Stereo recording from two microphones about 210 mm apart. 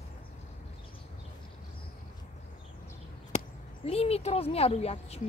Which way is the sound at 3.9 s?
30° left (ahead or behind).